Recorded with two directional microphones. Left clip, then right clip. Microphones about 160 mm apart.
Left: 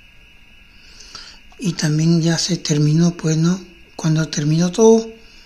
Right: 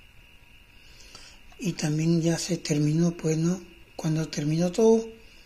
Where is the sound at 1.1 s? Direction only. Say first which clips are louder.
Left 8 dB; 25° left (ahead or behind).